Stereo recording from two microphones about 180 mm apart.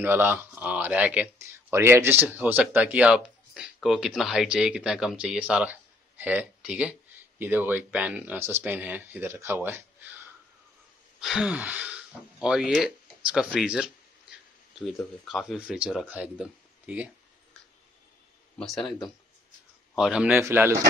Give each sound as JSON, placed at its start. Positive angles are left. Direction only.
{"t": 0.0, "sound": "speech", "side_deg": -10}
{"t": 11.1, "sound": "speech", "side_deg": -5}
{"t": 15.2, "sound": "speech", "side_deg": -5}
{"t": 18.6, "sound": "speech", "side_deg": 5}